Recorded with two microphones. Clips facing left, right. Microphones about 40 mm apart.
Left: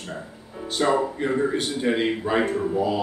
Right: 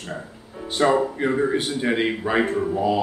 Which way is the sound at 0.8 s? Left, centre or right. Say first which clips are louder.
Right 3 dB; centre.